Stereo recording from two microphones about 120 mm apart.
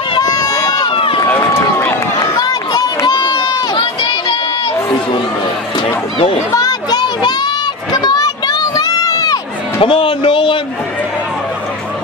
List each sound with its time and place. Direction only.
0.1 s run: 35° left (ahead or behind)
1.3 s run: 15° left (ahead or behind)
2.1 s run: 35° left (ahead or behind)
6.5 s a sound: 30° left (ahead or behind)
9.8 s speech: 45° left (ahead or behind)